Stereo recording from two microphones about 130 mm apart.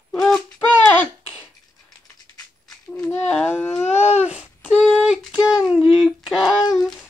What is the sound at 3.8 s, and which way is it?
Babbling, 60° left (ahead or behind).